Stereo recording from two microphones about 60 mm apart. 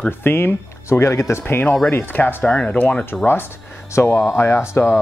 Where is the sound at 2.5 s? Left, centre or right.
Centre.